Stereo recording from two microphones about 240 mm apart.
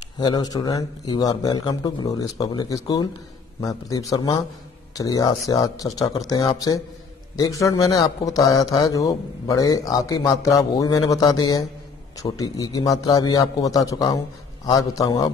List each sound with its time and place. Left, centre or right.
0.2 s a man's voice: centre